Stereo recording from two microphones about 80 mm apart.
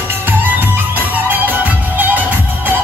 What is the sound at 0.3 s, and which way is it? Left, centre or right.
Music, right.